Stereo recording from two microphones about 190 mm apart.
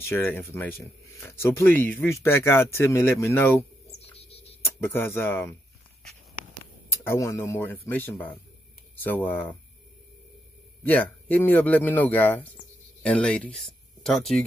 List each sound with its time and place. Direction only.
0.0 s speech: 10° left (ahead or behind)
4.2 s a sound: 30° left (ahead or behind)
4.6 s speech: 10° left (ahead or behind)
7.1 s speech: 15° left (ahead or behind)
10.8 s speech: 10° left (ahead or behind)